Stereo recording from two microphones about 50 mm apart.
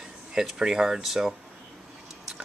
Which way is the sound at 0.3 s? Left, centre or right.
Centre.